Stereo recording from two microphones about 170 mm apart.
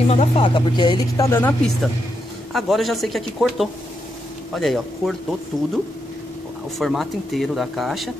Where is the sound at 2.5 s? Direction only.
Centre (ahead or behind).